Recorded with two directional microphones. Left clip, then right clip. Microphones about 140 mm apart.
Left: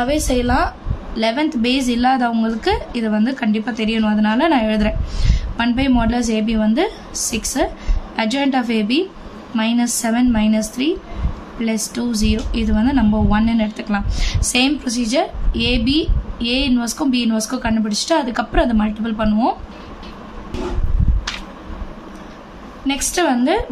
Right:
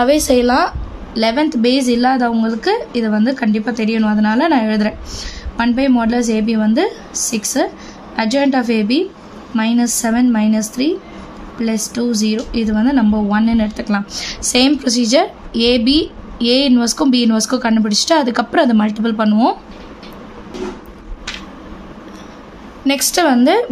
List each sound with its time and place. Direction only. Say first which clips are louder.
0.0 s a woman's voice: right 6 dB; 35° right (ahead or behind)
11.6 s a woman's voice: right 3 dB; 20° right (ahead or behind)
22.8 s a woman's voice: right 4 dB; 40° right (ahead or behind)